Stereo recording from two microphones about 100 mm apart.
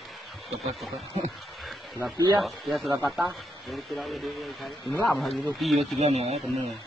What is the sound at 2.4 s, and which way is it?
Speech, centre (ahead or behind).